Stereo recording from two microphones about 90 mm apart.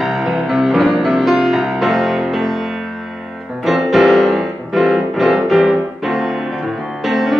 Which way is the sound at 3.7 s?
Centre (ahead or behind).